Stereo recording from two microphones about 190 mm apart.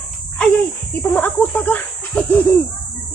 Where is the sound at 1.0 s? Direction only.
10° left (ahead or behind).